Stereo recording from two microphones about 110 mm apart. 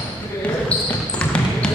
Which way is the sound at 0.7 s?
15° left (ahead or behind).